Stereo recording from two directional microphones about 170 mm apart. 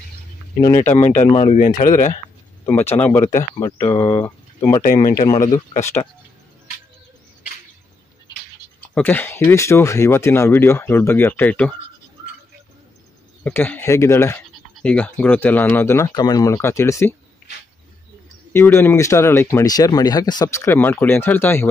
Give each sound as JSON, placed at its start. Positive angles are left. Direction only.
{"t": 0.7, "sound": "speech", "side_deg": 40}
{"t": 2.6, "sound": "speech", "side_deg": 15}
{"t": 4.0, "sound": "speech", "side_deg": 25}
{"t": 8.8, "sound": "speech", "side_deg": 10}
{"t": 13.4, "sound": "speech", "side_deg": 10}
{"t": 18.5, "sound": "speech", "side_deg": 15}